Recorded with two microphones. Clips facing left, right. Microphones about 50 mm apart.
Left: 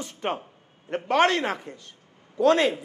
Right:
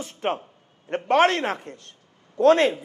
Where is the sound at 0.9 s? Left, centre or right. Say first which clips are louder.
Right 2 dB; right.